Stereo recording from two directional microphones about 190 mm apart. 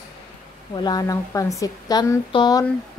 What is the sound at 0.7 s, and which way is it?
A woman's voice, 20° left (ahead or behind).